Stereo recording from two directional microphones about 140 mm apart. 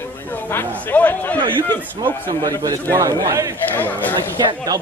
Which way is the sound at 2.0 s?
35° right (ahead or behind).